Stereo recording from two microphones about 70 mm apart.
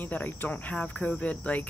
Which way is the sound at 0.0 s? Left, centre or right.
Left.